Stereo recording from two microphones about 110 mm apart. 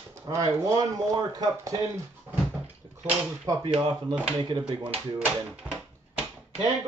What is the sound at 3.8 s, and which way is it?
Speech, 45° right (ahead or behind).